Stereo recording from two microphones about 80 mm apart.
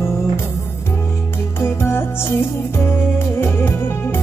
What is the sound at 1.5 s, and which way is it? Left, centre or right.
Music, left.